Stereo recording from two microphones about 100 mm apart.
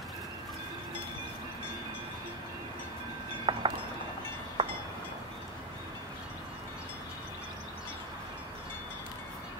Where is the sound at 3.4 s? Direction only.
55° right (ahead or behind).